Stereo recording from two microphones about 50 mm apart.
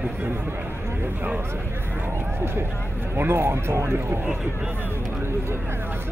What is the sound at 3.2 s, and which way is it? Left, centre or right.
Speech, right.